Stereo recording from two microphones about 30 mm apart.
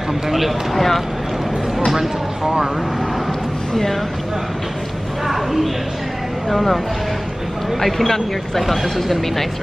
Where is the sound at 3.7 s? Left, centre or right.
Centre.